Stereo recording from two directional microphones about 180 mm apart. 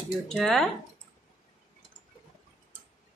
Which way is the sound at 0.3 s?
Centre (ahead or behind).